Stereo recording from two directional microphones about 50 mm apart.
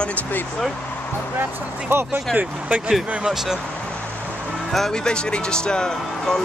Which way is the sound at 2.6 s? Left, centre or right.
Right.